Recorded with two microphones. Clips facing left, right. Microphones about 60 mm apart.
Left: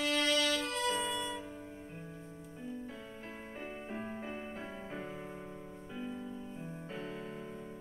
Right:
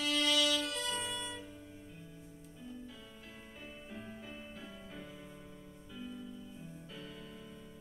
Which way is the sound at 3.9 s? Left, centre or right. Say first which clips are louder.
Left 6 dB; left.